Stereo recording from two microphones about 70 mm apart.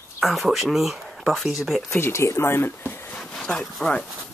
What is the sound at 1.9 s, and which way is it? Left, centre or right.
Speech, left.